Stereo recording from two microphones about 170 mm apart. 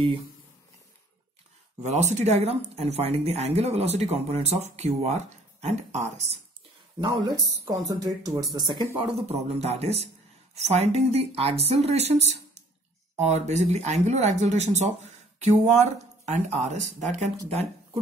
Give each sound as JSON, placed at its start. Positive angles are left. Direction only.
{"t": 1.9, "sound": "speech", "side_deg": -40}
{"t": 7.0, "sound": "speech", "side_deg": -25}